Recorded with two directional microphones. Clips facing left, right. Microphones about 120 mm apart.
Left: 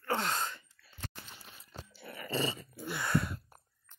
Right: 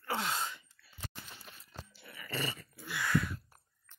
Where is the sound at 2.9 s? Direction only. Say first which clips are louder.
Even; 25° left (ahead or behind).